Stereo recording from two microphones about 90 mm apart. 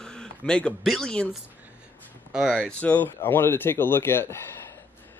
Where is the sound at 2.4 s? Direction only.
10° left (ahead or behind); by 4.4 s 25° left (ahead or behind).